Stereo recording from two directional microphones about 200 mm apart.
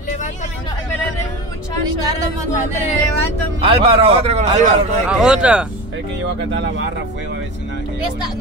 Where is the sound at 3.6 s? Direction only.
30° right (ahead or behind).